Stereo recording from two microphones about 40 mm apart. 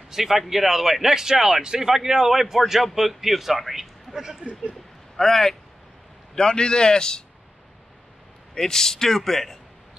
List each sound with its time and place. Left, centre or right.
0.1 s a man's voice: centre
4.1 s speech: centre
5.1 s a man's voice: centre
8.5 s a man's voice: centre